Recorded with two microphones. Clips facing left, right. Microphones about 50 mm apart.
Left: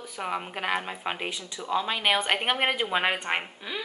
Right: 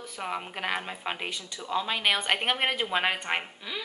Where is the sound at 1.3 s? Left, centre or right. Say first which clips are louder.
Left 2 dB; left.